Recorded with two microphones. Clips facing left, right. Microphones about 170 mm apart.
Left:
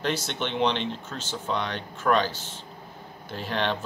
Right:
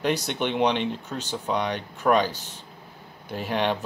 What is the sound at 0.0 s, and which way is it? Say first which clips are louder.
Speech: right 3 dB; 15° right (ahead or behind).